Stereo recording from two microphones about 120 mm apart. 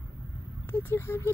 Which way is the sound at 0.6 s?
20° left (ahead or behind).